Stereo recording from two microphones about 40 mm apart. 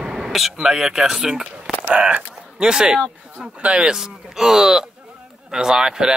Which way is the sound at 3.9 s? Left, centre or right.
Centre.